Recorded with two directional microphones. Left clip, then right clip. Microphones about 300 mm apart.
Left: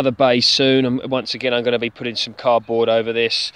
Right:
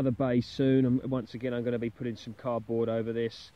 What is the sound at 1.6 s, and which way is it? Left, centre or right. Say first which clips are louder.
Speech: left 13 dB; left.